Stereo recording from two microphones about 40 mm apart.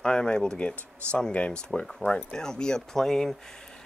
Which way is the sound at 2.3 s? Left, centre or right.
Centre.